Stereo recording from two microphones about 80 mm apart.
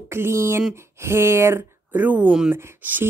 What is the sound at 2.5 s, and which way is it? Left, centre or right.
Speech, right.